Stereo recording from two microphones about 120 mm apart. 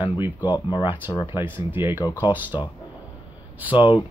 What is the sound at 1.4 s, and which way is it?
Speech, 15° right (ahead or behind).